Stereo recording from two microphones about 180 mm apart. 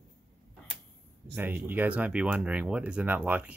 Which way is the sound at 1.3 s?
10° right (ahead or behind).